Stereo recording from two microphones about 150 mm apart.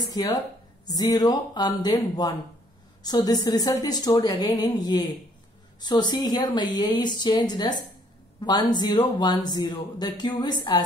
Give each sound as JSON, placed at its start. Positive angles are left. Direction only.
{"t": 0.0, "sound": "a woman's voice", "side_deg": 25}